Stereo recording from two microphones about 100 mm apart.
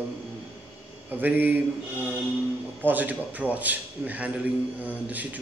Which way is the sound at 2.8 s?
20° right (ahead or behind).